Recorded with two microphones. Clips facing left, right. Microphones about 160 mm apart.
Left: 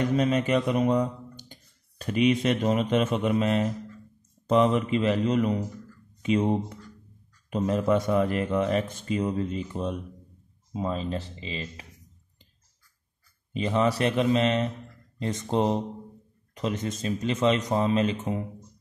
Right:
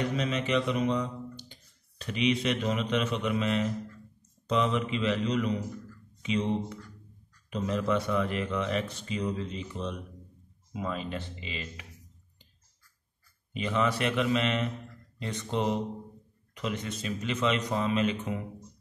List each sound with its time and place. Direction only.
0.1 s a man's voice: 45° left (ahead or behind)
10.7 s a man's voice: 30° left (ahead or behind)
13.5 s a man's voice: 35° left (ahead or behind)